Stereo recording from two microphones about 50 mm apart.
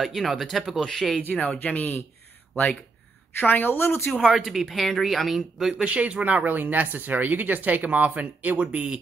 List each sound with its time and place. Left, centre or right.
0.0 s speech: centre
1.6 s speech: left
3.3 s a woman's voice: left
4.2 s a woman's voice: centre
4.5 s speech: centre
5.9 s speech: right
8.5 s speech: right